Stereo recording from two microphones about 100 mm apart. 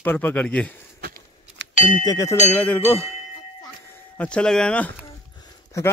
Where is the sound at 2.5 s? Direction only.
15° left (ahead or behind).